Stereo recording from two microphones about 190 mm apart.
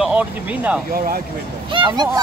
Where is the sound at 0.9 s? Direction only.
50° right (ahead or behind).